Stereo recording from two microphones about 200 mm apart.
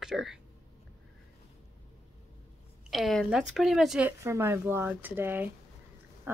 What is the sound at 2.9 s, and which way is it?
Speech, centre (ahead or behind).